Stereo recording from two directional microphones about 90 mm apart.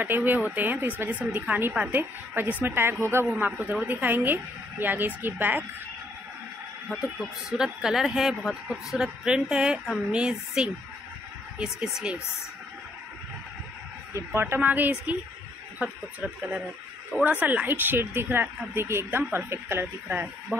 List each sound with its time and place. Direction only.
0.0 s speech: 20° right (ahead or behind)
6.9 s speech: 5° left (ahead or behind)
14.1 s speech: 25° right (ahead or behind)